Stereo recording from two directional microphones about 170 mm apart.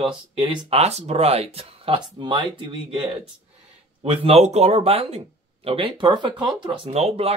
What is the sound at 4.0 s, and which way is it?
Speech, 35° right (ahead or behind).